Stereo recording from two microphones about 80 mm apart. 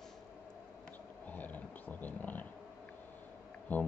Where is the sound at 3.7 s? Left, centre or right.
Left.